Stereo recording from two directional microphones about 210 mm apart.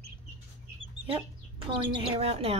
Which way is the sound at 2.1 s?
30° right (ahead or behind).